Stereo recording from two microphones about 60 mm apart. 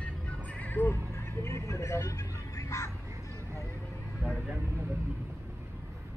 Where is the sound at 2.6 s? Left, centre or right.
Left.